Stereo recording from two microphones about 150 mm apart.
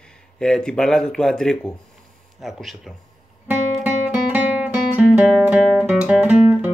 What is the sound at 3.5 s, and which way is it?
Music, 10° right (ahead or behind).